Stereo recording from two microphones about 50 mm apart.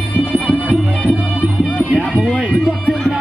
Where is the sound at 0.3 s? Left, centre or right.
Right.